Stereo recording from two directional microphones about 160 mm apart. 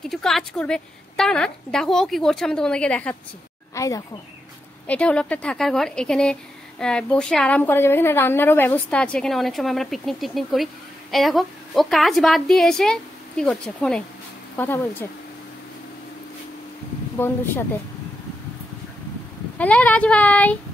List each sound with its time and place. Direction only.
0.1 s a woman's voice: centre (ahead or behind)
3.7 s speech: 20° left (ahead or behind)
4.8 s a woman's voice: 10° left (ahead or behind)
14.6 s child singing: 10° left (ahead or behind)
19.6 s child singing: 10° left (ahead or behind)